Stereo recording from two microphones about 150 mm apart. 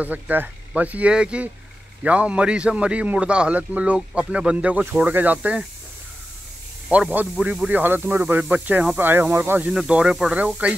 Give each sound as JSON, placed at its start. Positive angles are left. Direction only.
{"t": 0.0, "sound": "speech", "side_deg": -10}
{"t": 6.9, "sound": "speech", "side_deg": -10}